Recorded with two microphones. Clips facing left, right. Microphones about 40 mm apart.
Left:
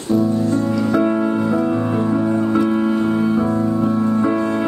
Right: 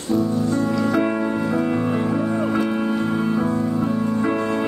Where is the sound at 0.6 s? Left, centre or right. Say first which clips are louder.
Left 2 dB; right.